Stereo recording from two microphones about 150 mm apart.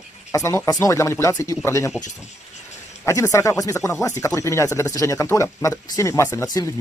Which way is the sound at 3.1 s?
20° left (ahead or behind).